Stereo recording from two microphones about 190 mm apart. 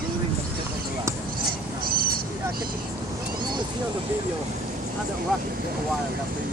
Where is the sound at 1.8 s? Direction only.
50° right (ahead or behind).